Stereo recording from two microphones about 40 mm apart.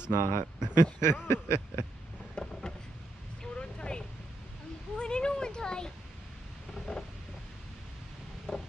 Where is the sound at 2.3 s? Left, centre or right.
Centre.